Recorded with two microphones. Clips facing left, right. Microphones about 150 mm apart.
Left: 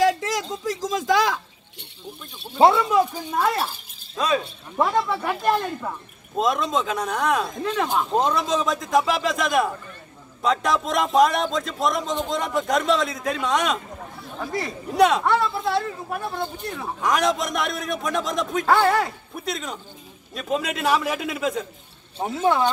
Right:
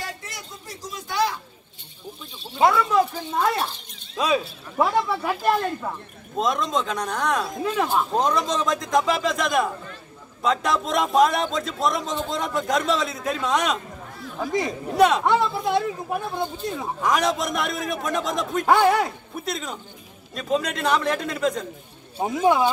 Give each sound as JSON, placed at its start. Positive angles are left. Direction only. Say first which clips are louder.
{"t": 0.0, "sound": "a sound", "louder": "left 15 dB", "side_deg": 90}
{"t": 2.6, "sound": "speech", "louder": "left 3 dB", "side_deg": 25}
{"t": 2.9, "sound": "speech", "louder": "left 1 dB", "side_deg": 10}
{"t": 15.0, "sound": "speech", "louder": "even", "side_deg": 0}
{"t": 15.2, "sound": "speech", "louder": "right 1 dB", "side_deg": -20}
{"t": 17.0, "sound": "speech", "louder": "left 1 dB", "side_deg": 0}
{"t": 18.7, "sound": "speech", "louder": "right 1 dB", "side_deg": -15}
{"t": 19.3, "sound": "speech", "louder": "even", "side_deg": 0}
{"t": 22.2, "sound": "speech", "louder": "right 1 dB", "side_deg": -15}